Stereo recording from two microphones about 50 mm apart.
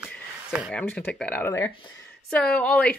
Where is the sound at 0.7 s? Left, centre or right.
Left.